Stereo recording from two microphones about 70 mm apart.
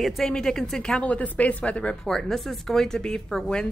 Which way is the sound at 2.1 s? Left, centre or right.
Centre.